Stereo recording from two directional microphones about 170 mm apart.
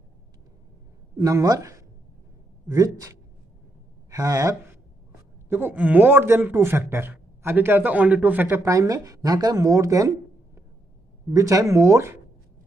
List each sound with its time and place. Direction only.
1.2 s a man's voice: 20° right (ahead or behind)